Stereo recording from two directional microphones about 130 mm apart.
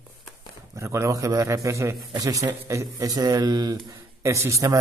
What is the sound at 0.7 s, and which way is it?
A man's voice, 25° right (ahead or behind).